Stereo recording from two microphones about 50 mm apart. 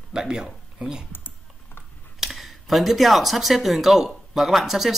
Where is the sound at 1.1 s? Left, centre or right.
Left.